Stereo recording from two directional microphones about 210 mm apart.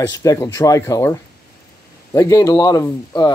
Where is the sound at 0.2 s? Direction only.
15° left (ahead or behind).